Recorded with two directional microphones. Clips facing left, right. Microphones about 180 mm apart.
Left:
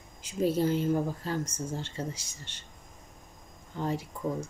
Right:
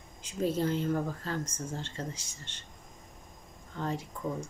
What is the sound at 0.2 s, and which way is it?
A woman's voice, 10° left (ahead or behind).